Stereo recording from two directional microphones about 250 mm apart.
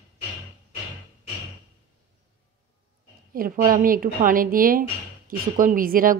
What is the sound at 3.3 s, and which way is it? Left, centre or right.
Speech, right.